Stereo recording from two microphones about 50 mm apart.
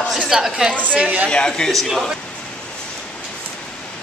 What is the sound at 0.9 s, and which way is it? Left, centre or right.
Speech, right.